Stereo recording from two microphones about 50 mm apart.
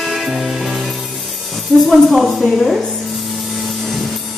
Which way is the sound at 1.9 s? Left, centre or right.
Centre.